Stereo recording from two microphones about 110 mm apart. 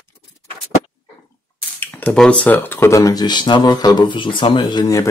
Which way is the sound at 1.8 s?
20° left (ahead or behind).